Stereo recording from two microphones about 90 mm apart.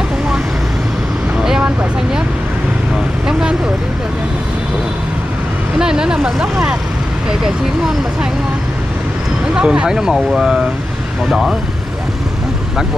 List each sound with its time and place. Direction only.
1.4 s vehicle: 5° right (ahead or behind)
3.3 s vehicle: 10° right (ahead or behind)
5.8 s vehicle: 10° right (ahead or behind)
9.5 s speech: 10° right (ahead or behind)